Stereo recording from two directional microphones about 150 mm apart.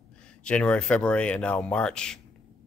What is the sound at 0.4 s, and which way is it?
Speech, 5° left (ahead or behind).